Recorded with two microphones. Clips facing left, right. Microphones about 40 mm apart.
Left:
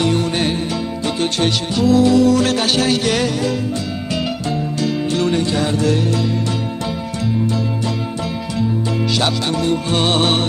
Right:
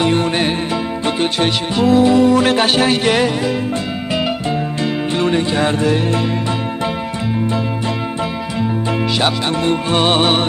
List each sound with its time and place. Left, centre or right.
1.0 s music: right
5.2 s music: right
9.6 s music: right
9.9 s music: centre